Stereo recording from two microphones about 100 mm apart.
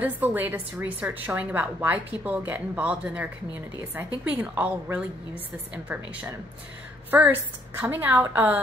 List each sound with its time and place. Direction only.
0.0 s a woman's voice: 20° right (ahead or behind)
7.1 s a woman's voice: 20° right (ahead or behind)